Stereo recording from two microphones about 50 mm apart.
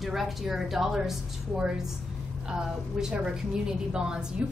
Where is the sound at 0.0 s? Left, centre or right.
Centre.